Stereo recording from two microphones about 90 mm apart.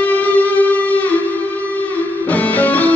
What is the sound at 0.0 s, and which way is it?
Music, 20° left (ahead or behind).